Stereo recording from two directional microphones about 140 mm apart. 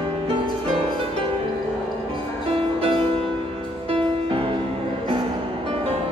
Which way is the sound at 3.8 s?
40° right (ahead or behind).